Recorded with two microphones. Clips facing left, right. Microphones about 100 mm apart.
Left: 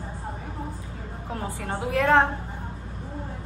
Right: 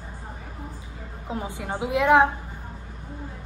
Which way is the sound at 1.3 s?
20° right (ahead or behind).